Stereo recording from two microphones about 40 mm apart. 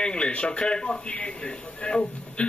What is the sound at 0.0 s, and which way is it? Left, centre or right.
A man's voice, left.